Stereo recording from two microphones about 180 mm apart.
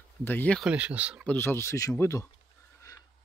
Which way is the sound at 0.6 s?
5° right (ahead or behind).